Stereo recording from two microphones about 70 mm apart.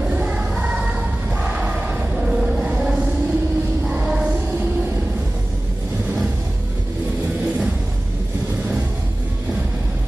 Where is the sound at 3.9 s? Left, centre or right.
Centre.